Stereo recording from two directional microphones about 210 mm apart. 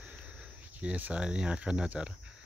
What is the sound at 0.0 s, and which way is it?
Speech, 5° right (ahead or behind).